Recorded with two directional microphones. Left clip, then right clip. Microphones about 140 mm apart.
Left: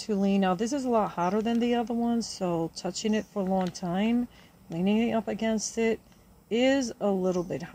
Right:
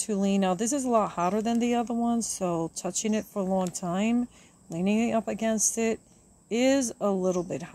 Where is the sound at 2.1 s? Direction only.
55° right (ahead or behind).